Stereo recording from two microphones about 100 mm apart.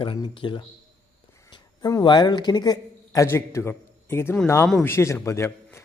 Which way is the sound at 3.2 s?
25° left (ahead or behind).